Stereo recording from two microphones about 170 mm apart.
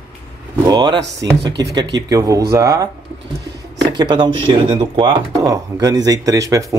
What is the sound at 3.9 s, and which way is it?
Speech, 25° right (ahead or behind).